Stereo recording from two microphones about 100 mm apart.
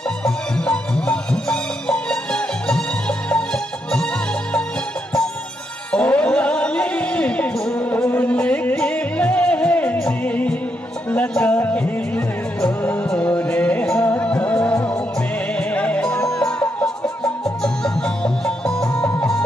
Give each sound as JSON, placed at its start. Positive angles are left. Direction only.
{"t": 0.2, "sound": "music", "side_deg": 10}
{"t": 5.9, "sound": "music", "side_deg": 10}
{"t": 18.9, "sound": "music", "side_deg": 15}